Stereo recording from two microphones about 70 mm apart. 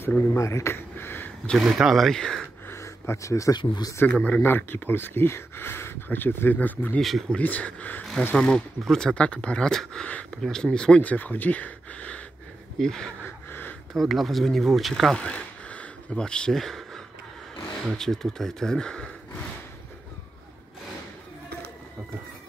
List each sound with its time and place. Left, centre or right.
0.3 s speech: left
1.6 s speech: centre
2.7 s a sound: left
3.5 s speech: left
4.1 s speech: left
7.0 s speech: centre
7.2 s speech: left
8.4 s speech: centre
11.0 s speech: left
12.7 s speech: centre
13.2 s a sound: left
13.9 s speech: centre
15.1 s a sound: centre
17.8 s speech: centre